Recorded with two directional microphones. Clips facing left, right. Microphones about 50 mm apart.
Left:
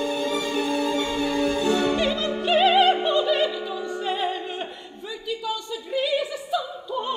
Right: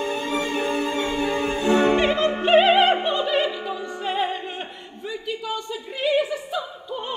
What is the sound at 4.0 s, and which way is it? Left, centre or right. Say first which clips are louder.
Opera: right 2 dB; right.